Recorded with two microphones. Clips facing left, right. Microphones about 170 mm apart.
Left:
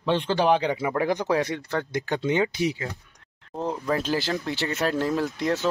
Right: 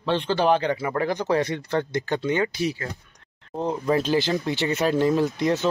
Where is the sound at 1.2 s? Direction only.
Centre (ahead or behind).